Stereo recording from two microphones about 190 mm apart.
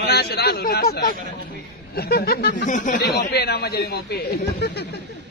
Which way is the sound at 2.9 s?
55° left (ahead or behind).